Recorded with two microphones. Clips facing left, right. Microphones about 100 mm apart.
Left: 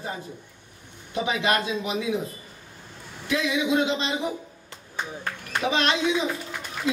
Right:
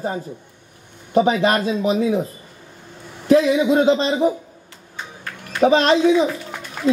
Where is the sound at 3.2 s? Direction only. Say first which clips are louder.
Right 10 dB; 40° right (ahead or behind).